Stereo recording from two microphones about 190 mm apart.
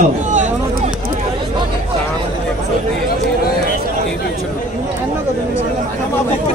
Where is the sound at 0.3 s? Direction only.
40° right (ahead or behind).